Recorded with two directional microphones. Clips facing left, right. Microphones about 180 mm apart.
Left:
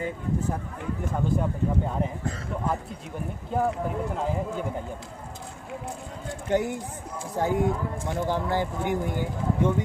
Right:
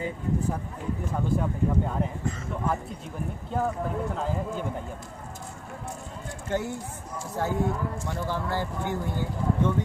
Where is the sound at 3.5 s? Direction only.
10° left (ahead or behind).